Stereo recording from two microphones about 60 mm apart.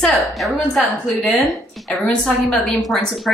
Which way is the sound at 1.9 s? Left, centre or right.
Centre.